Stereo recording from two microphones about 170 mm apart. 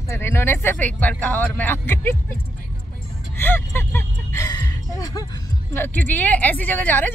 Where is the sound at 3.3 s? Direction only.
15° left (ahead or behind).